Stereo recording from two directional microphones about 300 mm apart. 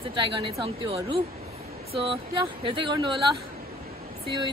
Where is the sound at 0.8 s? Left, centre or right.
Centre.